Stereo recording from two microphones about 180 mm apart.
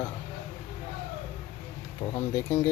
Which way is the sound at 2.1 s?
15° left (ahead or behind).